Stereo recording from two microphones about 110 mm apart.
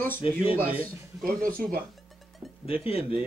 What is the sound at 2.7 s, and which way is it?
Speech, 60° left (ahead or behind).